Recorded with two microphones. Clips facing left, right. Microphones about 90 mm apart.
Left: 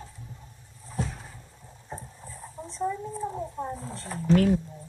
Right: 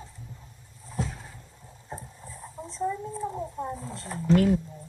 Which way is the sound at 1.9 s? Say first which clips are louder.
Even; centre (ahead or behind).